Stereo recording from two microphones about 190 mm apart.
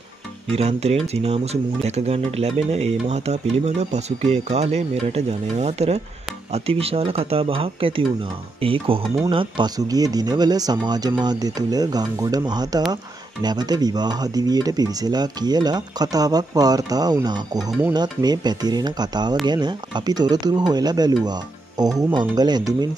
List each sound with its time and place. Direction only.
0.5 s speech: 35° right (ahead or behind)
17.6 s speech: centre (ahead or behind)
17.9 s speech: 20° right (ahead or behind)